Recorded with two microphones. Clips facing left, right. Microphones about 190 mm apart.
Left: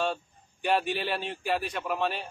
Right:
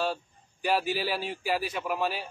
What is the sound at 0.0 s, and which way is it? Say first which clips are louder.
A man's voice: even; centre (ahead or behind).